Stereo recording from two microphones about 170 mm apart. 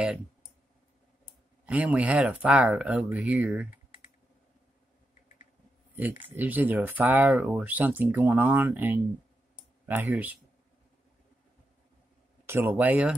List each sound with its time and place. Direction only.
1.7 s speech: 10° right (ahead or behind)
6.3 s speech: 10° right (ahead or behind)
12.4 s speech: 15° right (ahead or behind)